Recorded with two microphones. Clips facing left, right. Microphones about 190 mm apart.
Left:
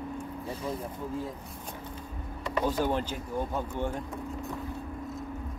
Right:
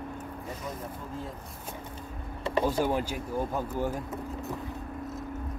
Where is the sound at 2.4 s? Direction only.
30° right (ahead or behind).